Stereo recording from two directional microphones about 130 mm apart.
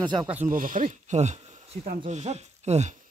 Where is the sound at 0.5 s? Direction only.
90° right; by 2.9 s 60° right (ahead or behind).